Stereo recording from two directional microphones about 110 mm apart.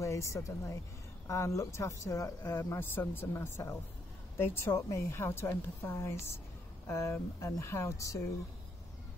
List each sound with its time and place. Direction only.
0.0 s a woman's voice: 30° left (ahead or behind)